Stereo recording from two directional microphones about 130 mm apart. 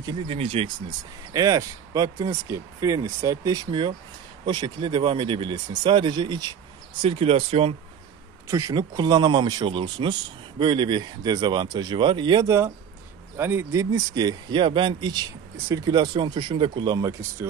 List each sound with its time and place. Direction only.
0.3 s speech: 50° right (ahead or behind)
1.3 s speech: 30° right (ahead or behind)
7.0 s speech: 45° right (ahead or behind)
8.5 s speech: 25° right (ahead or behind)